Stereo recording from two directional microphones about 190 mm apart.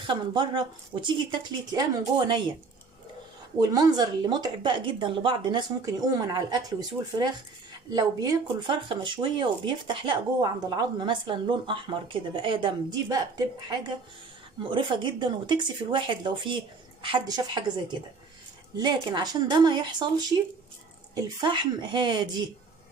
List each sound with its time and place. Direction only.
0.0 s speech: 25° right (ahead or behind)
3.6 s speech: 20° right (ahead or behind)